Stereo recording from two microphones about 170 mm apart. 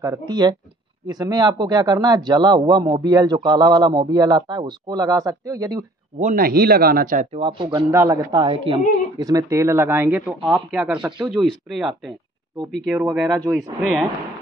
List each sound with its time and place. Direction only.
0.0 s speech: 20° right (ahead or behind)
6.1 s speech: 50° right (ahead or behind)
7.3 s speech: 30° right (ahead or behind)
7.9 s speech: 15° right (ahead or behind)
10.2 s speech: centre (ahead or behind)